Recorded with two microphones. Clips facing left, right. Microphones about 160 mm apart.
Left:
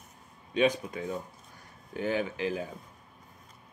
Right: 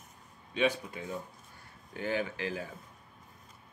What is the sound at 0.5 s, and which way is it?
Speech, 15° left (ahead or behind).